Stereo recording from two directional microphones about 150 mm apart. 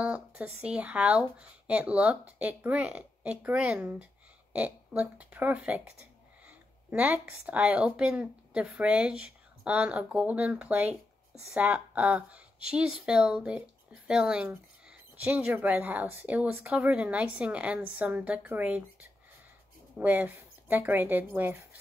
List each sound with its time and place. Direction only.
0.0 s speech: 10° right (ahead or behind)
20.0 s speech: 10° right (ahead or behind)